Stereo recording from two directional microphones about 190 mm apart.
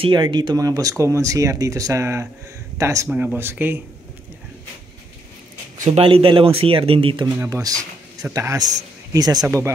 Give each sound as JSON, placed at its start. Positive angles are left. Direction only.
{"t": 0.0, "sound": "speech", "side_deg": -25}
{"t": 5.9, "sound": "speech", "side_deg": -30}
{"t": 7.3, "sound": "speech", "side_deg": -15}